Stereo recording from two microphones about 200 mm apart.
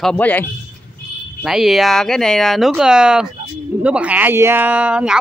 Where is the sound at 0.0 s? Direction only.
5° left (ahead or behind).